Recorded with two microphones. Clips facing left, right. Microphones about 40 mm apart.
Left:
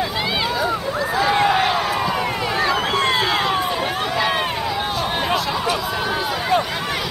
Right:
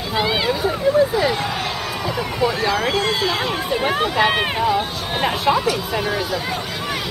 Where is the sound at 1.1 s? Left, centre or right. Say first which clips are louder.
Left 3 dB; left.